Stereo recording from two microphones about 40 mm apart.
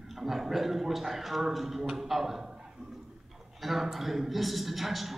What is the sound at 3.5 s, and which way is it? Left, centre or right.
A man's voice, centre.